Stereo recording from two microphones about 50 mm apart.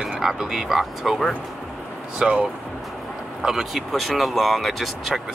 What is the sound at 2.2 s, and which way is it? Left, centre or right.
Speech, centre.